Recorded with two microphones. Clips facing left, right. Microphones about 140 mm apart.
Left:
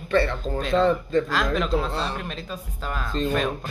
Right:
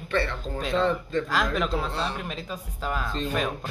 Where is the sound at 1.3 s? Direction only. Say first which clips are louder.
Left 2 dB; 5° right (ahead or behind).